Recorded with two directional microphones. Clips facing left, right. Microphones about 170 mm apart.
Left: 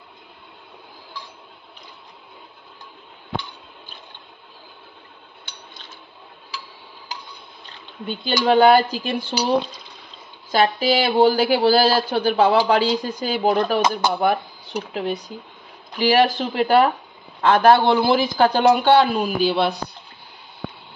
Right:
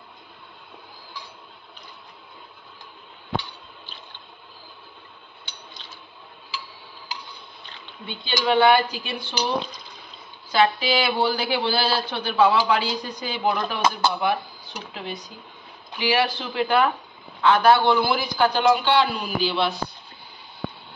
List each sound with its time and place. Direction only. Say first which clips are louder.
8.1 s speech: left 4 dB; 40° left (ahead or behind)
10.5 s speech: left 2 dB; 40° left (ahead or behind)
18.0 s speech: left 5 dB; 25° left (ahead or behind)
18.8 s speech: left 6 dB; 55° left (ahead or behind)